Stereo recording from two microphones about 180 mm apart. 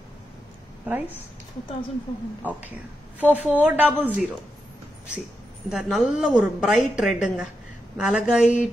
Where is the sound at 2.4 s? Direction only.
10° right (ahead or behind).